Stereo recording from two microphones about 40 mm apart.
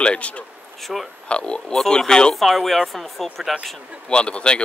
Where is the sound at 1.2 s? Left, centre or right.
Left.